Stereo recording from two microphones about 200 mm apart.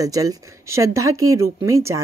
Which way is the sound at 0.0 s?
15° right (ahead or behind).